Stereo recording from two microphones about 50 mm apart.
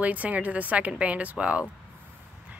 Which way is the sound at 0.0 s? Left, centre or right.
Right.